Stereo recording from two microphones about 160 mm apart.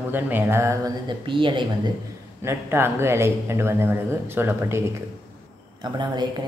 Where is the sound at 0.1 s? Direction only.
10° right (ahead or behind).